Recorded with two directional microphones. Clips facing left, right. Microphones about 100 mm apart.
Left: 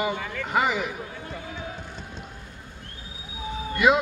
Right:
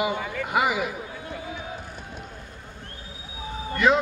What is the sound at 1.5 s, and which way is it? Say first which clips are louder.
Run: even; 15° right (ahead or behind).